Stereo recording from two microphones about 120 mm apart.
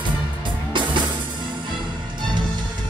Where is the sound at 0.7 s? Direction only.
40° right (ahead or behind).